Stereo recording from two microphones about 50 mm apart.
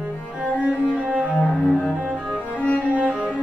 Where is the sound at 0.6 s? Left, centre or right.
Right.